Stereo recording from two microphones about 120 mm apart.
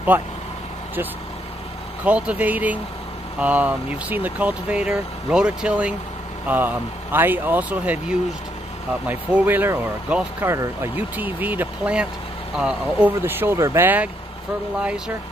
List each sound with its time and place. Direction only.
0.1 s speech: 15° right (ahead or behind)
2.0 s speech: 10° right (ahead or behind)
13.2 s speech: 20° right (ahead or behind)